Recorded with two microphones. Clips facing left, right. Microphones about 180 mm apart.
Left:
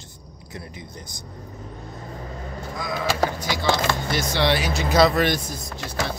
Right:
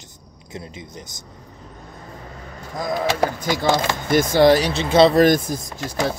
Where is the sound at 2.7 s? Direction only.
40° right (ahead or behind).